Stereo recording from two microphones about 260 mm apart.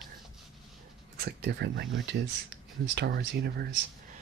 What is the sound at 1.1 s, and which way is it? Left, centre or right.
Speech, right.